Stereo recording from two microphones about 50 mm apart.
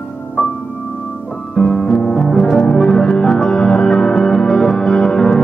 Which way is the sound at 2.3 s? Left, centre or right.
Centre.